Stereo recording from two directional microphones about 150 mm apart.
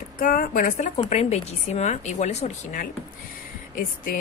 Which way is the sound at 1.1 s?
45° left (ahead or behind).